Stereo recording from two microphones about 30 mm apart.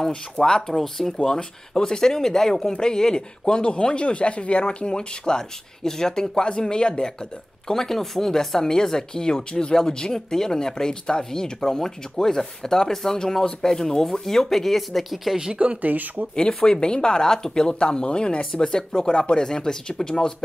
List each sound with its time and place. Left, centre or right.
0.4 s speech: centre
7.6 s speech: centre
15.3 s speech: right
15.8 s speech: right
16.6 s speech: left
17.7 s speech: left